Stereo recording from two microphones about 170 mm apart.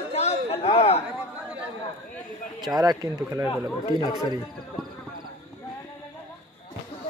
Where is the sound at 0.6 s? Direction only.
35° left (ahead or behind).